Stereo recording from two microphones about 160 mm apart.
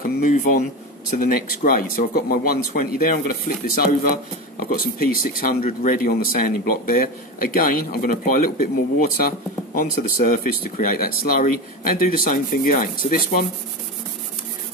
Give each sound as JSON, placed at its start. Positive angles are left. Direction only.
{"t": 0.0, "sound": "speech", "side_deg": 50}
{"t": 9.8, "sound": "speech", "side_deg": 60}